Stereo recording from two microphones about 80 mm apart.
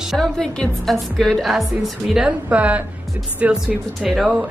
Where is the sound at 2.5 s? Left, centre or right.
Centre.